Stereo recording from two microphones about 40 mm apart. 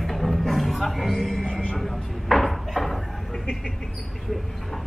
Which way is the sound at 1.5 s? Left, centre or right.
Left.